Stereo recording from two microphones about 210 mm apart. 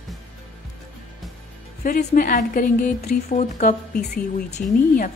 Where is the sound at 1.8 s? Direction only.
40° left (ahead or behind).